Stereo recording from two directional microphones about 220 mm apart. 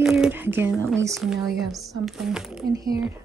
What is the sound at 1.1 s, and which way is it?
Speech, centre (ahead or behind).